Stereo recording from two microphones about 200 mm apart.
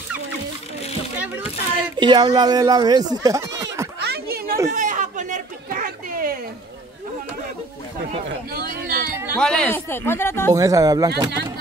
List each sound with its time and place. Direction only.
1.8 s speech: 25° right (ahead or behind)
4.0 s a sound: 50° right (ahead or behind)
4.6 s a sound: 40° right (ahead or behind)
8.5 s speech: 45° right (ahead or behind)
9.4 s speech: 5° left (ahead or behind)
10.5 s speech: 15° right (ahead or behind)